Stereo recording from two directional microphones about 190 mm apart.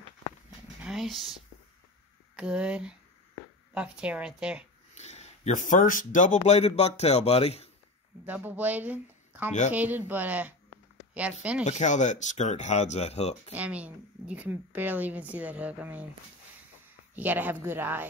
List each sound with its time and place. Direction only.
0.7 s speech: 5° right (ahead or behind)
2.3 s speech: 5° right (ahead or behind)
4.9 s speech: 35° left (ahead or behind)
8.3 s a woman's voice: 10° right (ahead or behind)
11.6 s speech: 40° left (ahead or behind)
13.6 s a woman's voice: 5° right (ahead or behind)
17.1 s a woman's voice: 10° right (ahead or behind)